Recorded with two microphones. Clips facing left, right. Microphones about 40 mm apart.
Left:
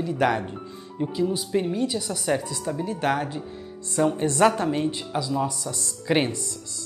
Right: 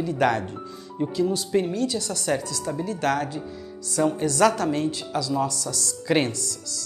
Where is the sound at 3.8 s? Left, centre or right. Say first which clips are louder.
Even; left.